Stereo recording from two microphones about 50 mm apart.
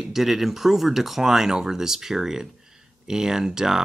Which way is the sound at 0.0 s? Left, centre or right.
Centre.